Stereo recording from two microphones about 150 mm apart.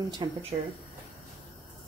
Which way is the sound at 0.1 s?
35° right (ahead or behind).